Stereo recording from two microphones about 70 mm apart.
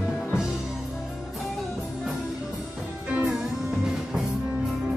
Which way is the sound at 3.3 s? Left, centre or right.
Centre.